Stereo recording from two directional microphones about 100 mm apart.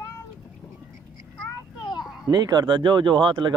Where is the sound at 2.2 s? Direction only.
45° right (ahead or behind).